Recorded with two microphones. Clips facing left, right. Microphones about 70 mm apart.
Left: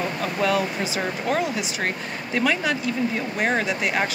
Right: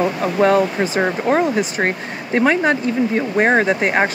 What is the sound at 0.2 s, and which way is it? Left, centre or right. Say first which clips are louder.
Speech: right 7 dB; right.